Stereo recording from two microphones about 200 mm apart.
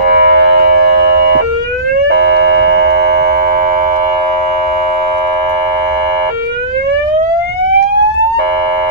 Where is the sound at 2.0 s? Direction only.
55° right (ahead or behind).